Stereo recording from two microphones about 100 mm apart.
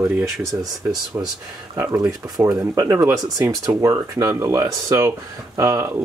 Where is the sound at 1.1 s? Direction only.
20° right (ahead or behind).